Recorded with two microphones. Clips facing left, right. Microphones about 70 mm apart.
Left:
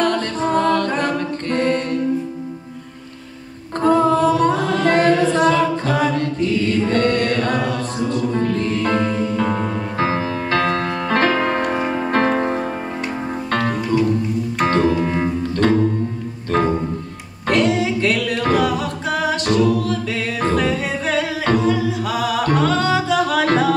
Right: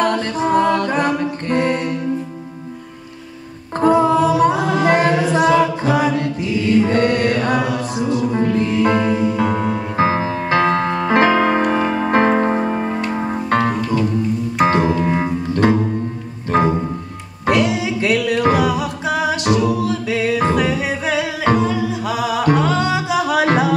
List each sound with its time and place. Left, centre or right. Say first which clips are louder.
0.0 s music: right 1 dB; centre
3.8 s music: right 1 dB; centre
17.5 s singing: even; centre